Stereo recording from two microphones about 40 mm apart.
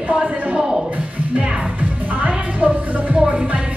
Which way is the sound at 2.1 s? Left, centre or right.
Right.